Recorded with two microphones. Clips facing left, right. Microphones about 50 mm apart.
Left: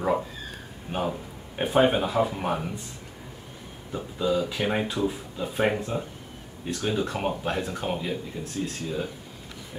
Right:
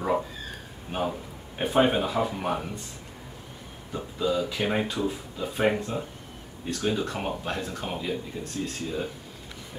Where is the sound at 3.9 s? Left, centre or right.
Centre.